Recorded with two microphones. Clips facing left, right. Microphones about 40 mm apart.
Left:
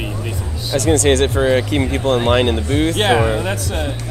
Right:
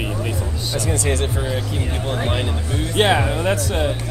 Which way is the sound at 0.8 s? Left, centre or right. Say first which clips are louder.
Left 9 dB; left.